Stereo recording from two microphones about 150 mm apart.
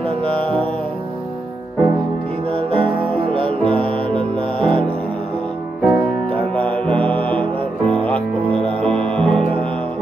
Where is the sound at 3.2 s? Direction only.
35° right (ahead or behind).